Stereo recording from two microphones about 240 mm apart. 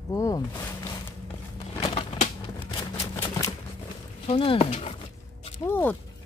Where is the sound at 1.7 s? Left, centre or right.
Left.